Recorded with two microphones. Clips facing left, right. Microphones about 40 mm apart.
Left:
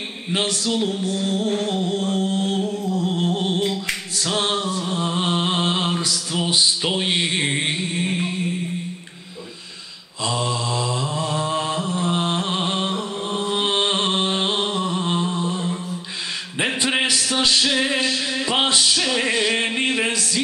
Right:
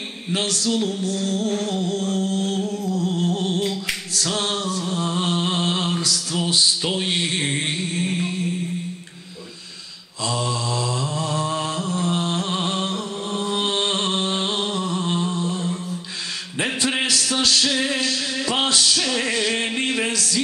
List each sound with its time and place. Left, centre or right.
0.3 s music: centre
10.2 s mantra: centre
12.2 s a sound: left
16.5 s music: centre